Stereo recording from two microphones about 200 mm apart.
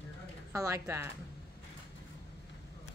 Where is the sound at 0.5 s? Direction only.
15° right (ahead or behind).